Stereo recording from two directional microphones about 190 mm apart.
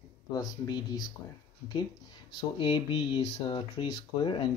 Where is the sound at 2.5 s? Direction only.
25° left (ahead or behind).